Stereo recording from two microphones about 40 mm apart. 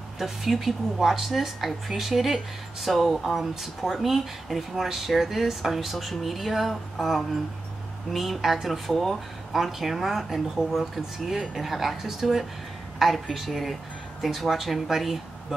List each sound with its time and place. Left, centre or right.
0.2 s speech: centre
8.9 s speech: centre
9.5 s speech: centre